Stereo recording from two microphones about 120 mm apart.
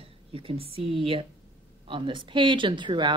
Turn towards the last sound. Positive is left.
turn(degrees=-40)  # may be behind; listen again after turning